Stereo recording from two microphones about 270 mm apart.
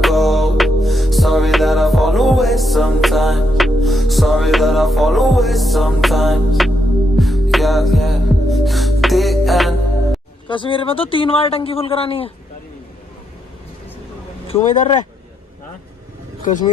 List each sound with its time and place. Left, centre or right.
0.0 s music: centre
10.5 s speech: centre
14.5 s speech: left
16.4 s speech: left